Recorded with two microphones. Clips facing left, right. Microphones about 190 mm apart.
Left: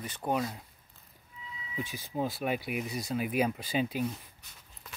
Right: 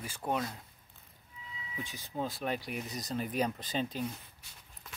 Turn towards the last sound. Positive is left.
turn(degrees=10)  # may be behind; listen again after turning